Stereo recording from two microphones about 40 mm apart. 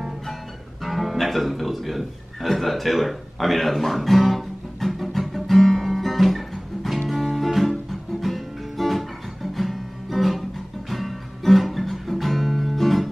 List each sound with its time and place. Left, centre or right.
0.8 s music: centre
7.1 s guitar: centre
7.9 s music: centre